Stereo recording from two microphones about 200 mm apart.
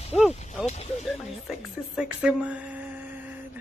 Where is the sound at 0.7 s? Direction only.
35° left (ahead or behind).